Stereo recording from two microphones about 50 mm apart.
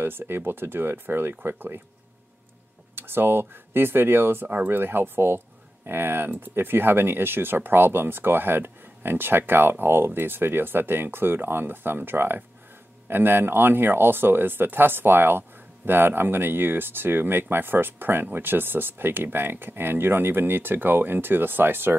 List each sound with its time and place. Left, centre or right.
0.0 s speech: right
3.0 s speech: right
4.5 s speech: right
4.7 s speech: right